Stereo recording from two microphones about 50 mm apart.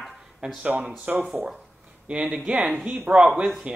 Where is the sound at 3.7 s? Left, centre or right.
Right.